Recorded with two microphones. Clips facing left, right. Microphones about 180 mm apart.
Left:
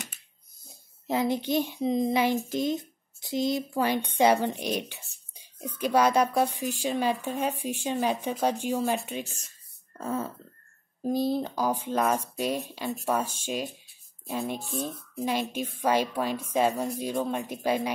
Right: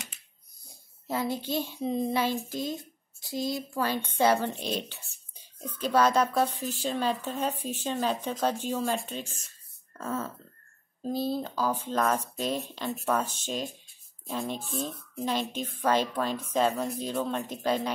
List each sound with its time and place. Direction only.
1.0 s a woman's voice: 20° left (ahead or behind)
15.8 s a woman's voice: 10° left (ahead or behind)